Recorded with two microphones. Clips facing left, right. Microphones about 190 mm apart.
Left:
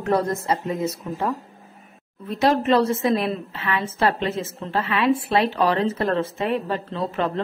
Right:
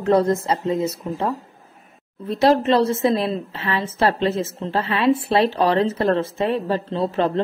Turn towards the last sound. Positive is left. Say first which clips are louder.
# right 4 dB
turn(degrees=-30)  # may be behind; listen again after turning